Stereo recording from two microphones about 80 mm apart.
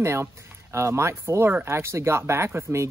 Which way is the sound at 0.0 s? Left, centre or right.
Right.